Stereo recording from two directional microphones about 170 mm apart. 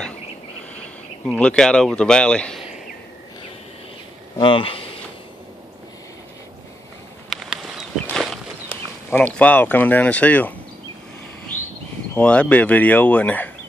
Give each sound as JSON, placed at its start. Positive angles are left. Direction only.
{"t": 1.2, "sound": "speech", "side_deg": 5}
{"t": 4.4, "sound": "speech", "side_deg": 30}
{"t": 7.2, "sound": "a sound", "side_deg": 0}
{"t": 9.1, "sound": "speech", "side_deg": 10}
{"t": 12.2, "sound": "speech", "side_deg": 5}